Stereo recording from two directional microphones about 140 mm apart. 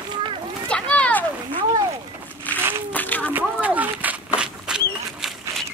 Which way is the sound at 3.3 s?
10° right (ahead or behind).